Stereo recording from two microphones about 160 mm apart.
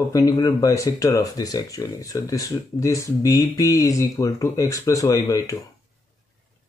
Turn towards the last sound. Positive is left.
turn(degrees=20)  # may be behind; listen again after turning